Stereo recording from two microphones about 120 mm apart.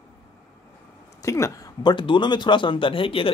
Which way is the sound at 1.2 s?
25° left (ahead or behind).